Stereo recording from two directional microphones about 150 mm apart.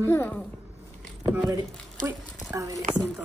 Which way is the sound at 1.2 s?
10° right (ahead or behind).